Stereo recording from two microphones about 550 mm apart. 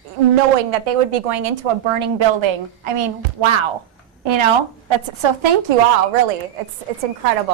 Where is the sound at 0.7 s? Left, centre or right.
Right.